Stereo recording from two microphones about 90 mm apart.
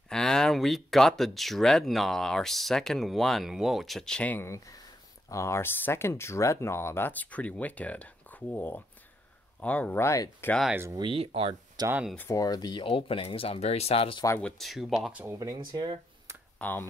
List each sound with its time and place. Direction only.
0.1 s speech: 5° left (ahead or behind)
4.3 s speech: 25° left (ahead or behind)
9.9 s speech: 30° left (ahead or behind)
11.0 s speech: 80° right
11.8 s speech: 50° right (ahead or behind)
12.3 s speech: 45° left (ahead or behind)
12.8 s speech: 85° left
14.4 s speech: centre (ahead or behind)
15.3 s speech: 45° right (ahead or behind)
16.5 s speech: 20° left (ahead or behind)